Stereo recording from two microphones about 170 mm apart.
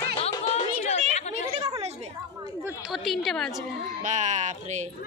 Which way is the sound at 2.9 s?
Centre (ahead or behind).